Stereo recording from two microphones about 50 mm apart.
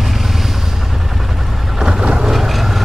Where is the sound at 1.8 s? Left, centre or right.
Centre.